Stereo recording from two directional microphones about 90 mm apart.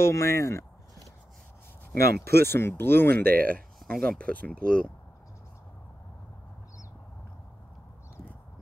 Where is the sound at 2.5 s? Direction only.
25° left (ahead or behind).